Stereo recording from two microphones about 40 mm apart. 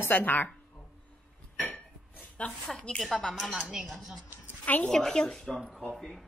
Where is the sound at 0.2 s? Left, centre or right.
Left.